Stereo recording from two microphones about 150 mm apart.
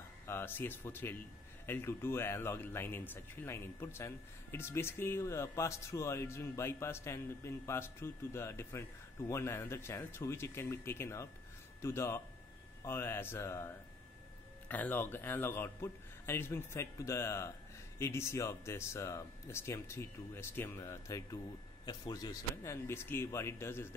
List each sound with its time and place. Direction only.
0.3 s speech: 15° left (ahead or behind)
14.7 s speech: 10° left (ahead or behind)